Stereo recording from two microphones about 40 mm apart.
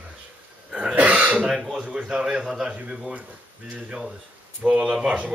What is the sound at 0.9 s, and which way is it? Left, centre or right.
Throat clearing, right.